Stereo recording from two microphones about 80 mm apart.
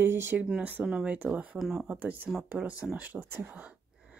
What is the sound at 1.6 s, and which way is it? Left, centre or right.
Speech, centre.